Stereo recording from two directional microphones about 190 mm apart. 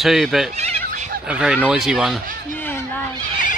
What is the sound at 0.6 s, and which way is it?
Fowl, 35° right (ahead or behind).